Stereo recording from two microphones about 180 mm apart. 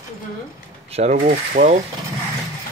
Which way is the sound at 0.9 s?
35° right (ahead or behind).